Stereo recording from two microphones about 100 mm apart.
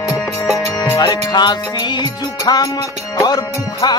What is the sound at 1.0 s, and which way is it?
Music, 45° left (ahead or behind).